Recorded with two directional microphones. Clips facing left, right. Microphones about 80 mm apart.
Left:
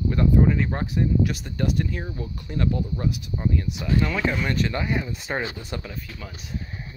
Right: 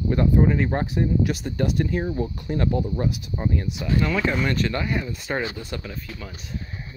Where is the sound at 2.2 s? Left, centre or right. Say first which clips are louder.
Right 4 dB; right.